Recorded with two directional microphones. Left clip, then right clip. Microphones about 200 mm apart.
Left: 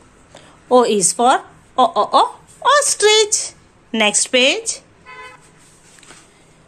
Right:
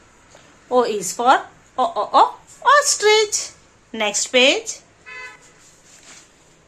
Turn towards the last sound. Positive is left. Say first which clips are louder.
# even
turn(degrees=40)  # may be behind; listen again after turning